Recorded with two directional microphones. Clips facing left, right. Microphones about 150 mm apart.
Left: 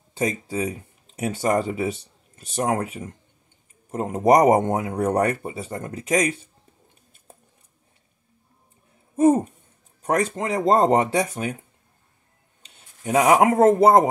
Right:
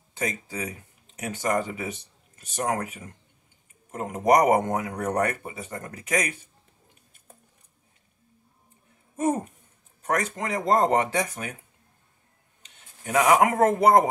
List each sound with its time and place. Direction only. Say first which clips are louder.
0.2 s speech: left 6 dB; 30° left (ahead or behind)
9.1 s speech: left 8 dB; 35° left (ahead or behind)
12.6 s a sound: left 7 dB; 35° left (ahead or behind)
13.5 s speech: left 4 dB; 30° left (ahead or behind)